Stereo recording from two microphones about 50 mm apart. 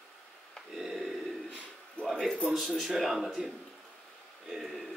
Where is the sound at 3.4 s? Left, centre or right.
Centre.